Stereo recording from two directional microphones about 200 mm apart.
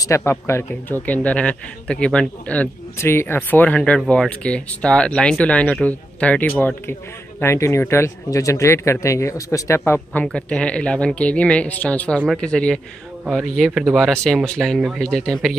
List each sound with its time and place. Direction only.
0.0 s a man's voice: 15° left (ahead or behind)